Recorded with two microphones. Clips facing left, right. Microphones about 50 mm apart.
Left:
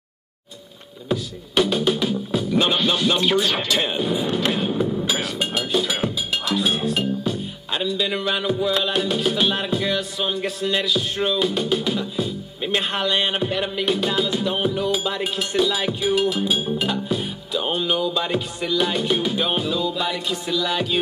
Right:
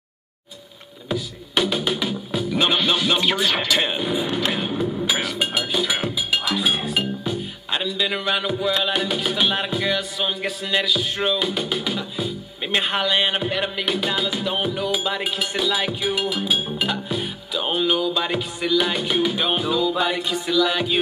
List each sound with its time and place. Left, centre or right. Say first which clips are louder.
1.5 s speech: left 2 dB; centre
4.8 s a sound: even; centre
5.6 s music: left 3 dB; centre
7.9 s speech: even; centre
19.9 s music: right 3 dB; right
20.6 s speech: right 1 dB; centre